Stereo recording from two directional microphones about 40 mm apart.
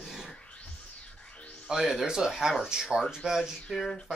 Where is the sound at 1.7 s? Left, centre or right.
Centre.